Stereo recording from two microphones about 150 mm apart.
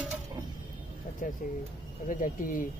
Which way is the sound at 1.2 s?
60° left (ahead or behind).